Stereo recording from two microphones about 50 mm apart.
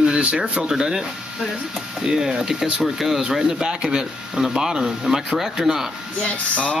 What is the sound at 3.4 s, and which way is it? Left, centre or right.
Speech, centre.